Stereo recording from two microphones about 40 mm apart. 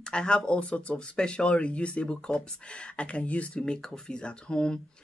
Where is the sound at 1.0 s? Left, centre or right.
Left.